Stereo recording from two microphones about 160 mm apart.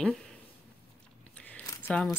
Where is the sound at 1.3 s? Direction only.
10° left (ahead or behind).